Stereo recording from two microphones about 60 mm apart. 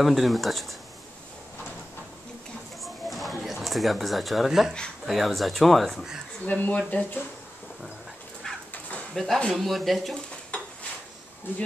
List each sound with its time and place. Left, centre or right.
0.0 s speech: centre
2.8 s a sound: centre
5.0 s speech: centre
6.4 s speech: left
8.5 s dog: centre
9.1 s speech: centre